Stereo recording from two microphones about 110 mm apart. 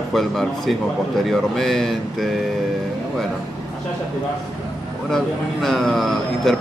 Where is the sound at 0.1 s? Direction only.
Centre (ahead or behind).